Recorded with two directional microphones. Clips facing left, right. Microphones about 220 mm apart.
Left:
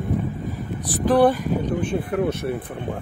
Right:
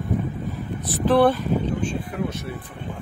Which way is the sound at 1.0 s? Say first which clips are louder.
Left 1 dB; 15° left (ahead or behind).